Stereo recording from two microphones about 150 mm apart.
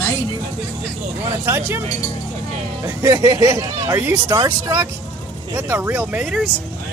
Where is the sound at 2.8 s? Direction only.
15° right (ahead or behind).